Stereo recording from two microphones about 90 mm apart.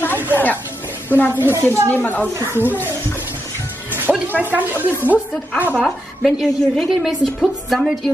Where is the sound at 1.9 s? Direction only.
20° left (ahead or behind).